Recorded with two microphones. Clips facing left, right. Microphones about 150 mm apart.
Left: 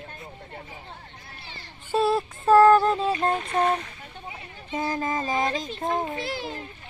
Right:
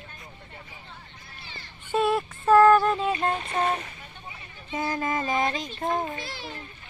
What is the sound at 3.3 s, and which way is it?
Speech, centre (ahead or behind).